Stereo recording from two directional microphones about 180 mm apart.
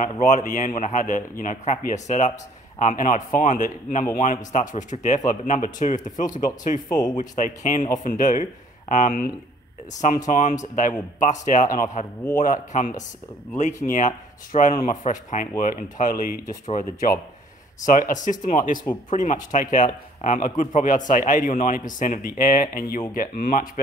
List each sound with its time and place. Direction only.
0.0 s speech: 45° left (ahead or behind)